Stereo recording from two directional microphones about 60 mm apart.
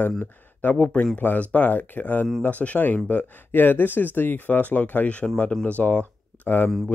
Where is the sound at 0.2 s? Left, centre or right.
Left.